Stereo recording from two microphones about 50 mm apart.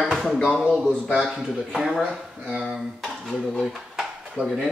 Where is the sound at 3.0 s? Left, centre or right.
Centre.